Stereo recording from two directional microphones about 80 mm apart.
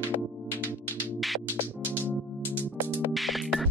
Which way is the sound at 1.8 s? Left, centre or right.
Left.